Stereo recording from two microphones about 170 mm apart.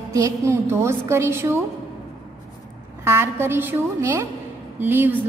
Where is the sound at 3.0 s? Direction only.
15° right (ahead or behind).